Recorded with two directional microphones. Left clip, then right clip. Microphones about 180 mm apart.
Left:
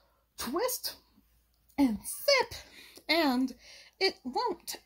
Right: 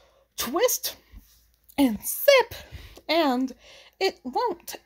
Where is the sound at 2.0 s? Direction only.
35° right (ahead or behind).